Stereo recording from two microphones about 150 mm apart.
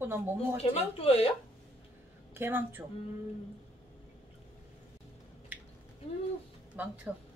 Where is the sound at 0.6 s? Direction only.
40° left (ahead or behind).